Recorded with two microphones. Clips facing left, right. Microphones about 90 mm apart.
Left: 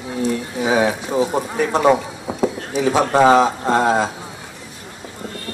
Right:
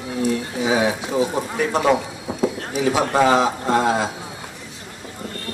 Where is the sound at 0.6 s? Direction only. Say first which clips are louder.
Left 3 dB; 45° left (ahead or behind).